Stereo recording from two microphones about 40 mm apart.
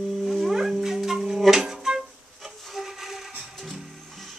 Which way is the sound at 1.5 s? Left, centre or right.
Centre.